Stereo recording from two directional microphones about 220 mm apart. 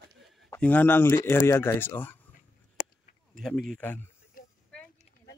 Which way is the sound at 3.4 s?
Centre (ahead or behind).